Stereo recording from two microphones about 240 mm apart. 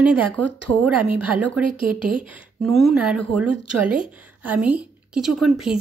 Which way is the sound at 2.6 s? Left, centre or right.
Centre.